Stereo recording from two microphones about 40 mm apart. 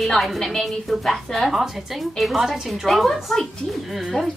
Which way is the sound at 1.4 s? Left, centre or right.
Centre.